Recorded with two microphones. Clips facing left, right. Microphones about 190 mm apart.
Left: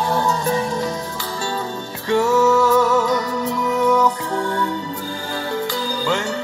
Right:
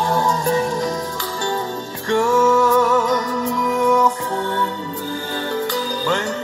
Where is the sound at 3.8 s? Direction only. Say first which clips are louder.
Even; 10° right (ahead or behind).